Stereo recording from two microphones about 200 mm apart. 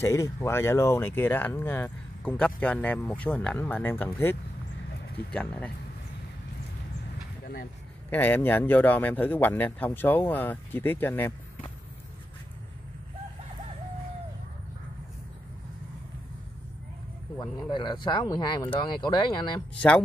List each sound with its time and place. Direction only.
0.0 s speech: 15° left (ahead or behind)
8.1 s speech: 10° left (ahead or behind)
17.4 s speech: 20° left (ahead or behind)